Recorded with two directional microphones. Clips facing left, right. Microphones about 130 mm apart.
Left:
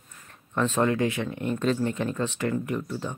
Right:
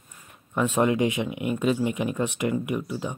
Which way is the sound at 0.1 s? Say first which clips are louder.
Right 1 dB; 10° right (ahead or behind).